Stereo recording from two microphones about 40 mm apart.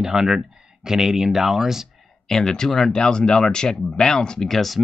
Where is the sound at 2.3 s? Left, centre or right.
Centre.